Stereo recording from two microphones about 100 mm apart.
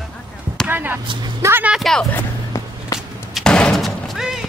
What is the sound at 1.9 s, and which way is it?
Vehicle, centre (ahead or behind).